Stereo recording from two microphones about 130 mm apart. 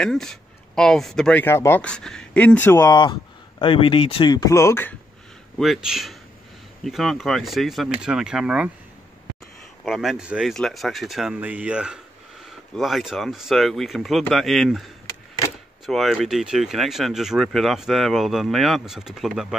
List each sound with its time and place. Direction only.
0.0 s speech: 5° left (ahead or behind)
1.4 s speech: 20° left (ahead or behind)
2.9 s speech: 35° left (ahead or behind); by 4.9 s 20° left (ahead or behind)
5.6 s speech: centre (ahead or behind)
9.8 s speech: centre (ahead or behind)